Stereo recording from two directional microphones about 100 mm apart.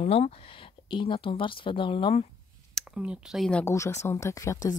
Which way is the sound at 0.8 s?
55° left (ahead or behind).